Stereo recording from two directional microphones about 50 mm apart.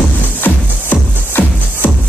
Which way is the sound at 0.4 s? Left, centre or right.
Left.